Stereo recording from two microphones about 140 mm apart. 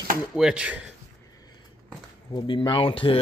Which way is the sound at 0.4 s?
5° right (ahead or behind).